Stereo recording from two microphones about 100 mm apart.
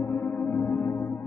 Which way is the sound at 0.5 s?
25° left (ahead or behind).